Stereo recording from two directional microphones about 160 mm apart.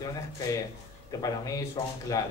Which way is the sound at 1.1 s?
20° left (ahead or behind).